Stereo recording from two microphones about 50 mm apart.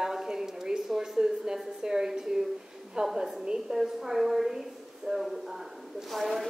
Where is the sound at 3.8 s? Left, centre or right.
Centre.